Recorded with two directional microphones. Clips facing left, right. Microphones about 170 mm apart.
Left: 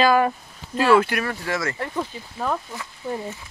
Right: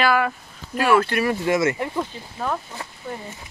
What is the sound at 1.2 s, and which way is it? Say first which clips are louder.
Speech: right 7 dB; 20° right (ahead or behind).